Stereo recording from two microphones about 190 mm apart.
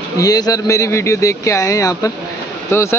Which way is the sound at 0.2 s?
20° left (ahead or behind).